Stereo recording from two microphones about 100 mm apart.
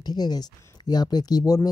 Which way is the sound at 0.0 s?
45° left (ahead or behind).